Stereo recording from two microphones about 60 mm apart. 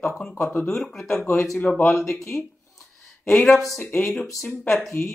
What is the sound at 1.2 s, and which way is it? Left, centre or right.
Speech, left.